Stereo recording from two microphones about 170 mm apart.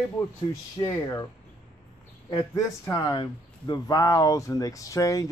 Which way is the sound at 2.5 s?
20° left (ahead or behind).